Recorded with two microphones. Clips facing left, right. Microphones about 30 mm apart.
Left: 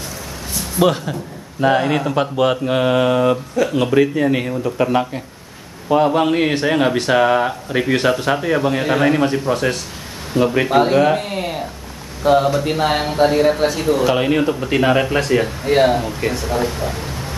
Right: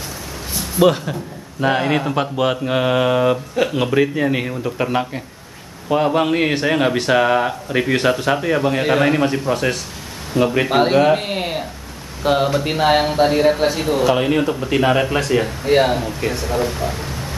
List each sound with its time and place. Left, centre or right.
0.6 s a man's voice: centre
11.1 s a man's voice: right
14.0 s speech: centre